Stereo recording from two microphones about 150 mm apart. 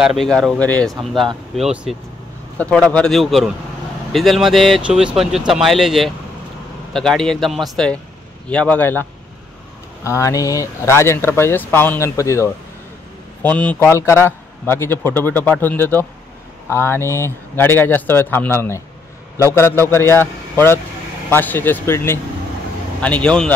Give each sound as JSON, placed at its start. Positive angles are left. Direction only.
{"t": 0.0, "sound": "speech", "side_deg": 0}
{"t": 2.5, "sound": "a man's voice", "side_deg": 10}
{"t": 10.0, "sound": "a man's voice", "side_deg": 20}